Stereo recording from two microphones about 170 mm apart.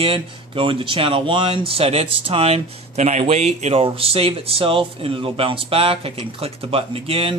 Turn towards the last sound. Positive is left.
turn(degrees=-35)  # may be behind; listen again after turning